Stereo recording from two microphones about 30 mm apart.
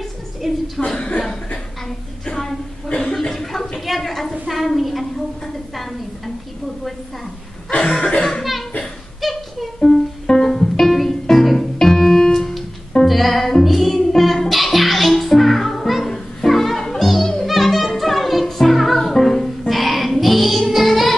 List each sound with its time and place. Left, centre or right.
0.4 s a woman's voice: centre
0.8 s speech: left
2.3 s a sound: centre
2.9 s cough: left
3.2 s a sound: centre
8.0 s chuckle: left
8.3 s a sound: centre
10.2 s music: centre
13.0 s music: centre